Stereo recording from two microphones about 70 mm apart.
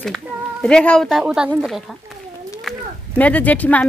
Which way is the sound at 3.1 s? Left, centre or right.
Left.